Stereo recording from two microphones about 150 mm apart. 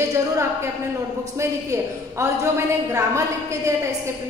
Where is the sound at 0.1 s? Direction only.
20° right (ahead or behind).